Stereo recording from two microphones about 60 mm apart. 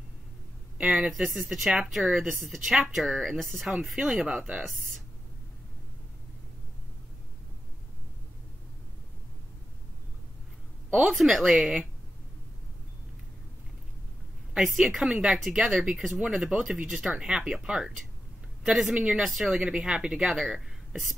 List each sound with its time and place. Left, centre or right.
0.7 s speech: centre
1.1 s speech: centre
4.6 s a sound: centre
11.1 s speech: centre
14.7 s speech: centre
15.0 s speech: centre
20.3 s speech: centre